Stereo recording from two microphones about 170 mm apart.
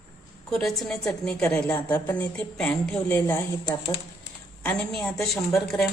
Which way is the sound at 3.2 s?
20° left (ahead or behind).